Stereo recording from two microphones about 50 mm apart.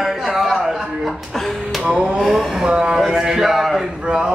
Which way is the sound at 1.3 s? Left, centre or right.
Centre.